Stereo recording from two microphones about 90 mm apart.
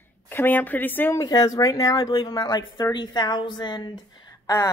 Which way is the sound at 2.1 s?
60° left (ahead or behind).